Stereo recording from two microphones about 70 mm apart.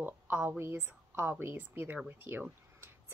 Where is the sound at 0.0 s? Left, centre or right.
Right.